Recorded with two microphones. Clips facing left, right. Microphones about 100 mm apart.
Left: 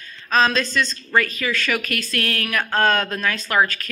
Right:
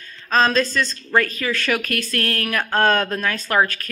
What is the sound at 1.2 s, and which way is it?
Speech, 40° right (ahead or behind).